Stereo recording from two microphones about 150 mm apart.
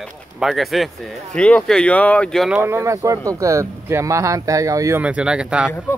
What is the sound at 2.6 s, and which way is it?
Speech, 20° right (ahead or behind).